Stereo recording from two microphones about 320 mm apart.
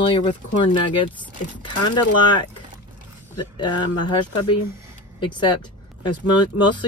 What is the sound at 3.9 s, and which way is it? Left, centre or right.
Speech, left.